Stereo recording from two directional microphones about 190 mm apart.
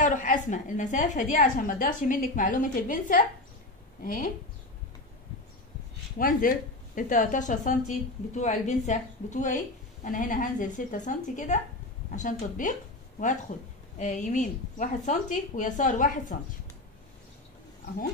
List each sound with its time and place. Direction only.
0.0 s a woman's voice: 40° left (ahead or behind)
6.1 s a woman's voice: 50° left (ahead or behind)
13.9 s a woman's voice: 40° left (ahead or behind)